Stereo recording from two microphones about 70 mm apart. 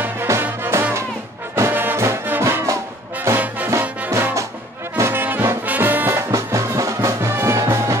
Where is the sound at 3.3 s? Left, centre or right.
Right.